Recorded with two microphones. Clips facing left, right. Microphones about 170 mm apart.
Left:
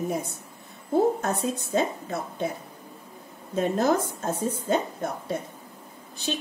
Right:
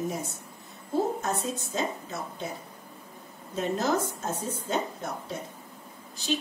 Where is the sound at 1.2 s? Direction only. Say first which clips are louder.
Left 3 dB; 55° left (ahead or behind).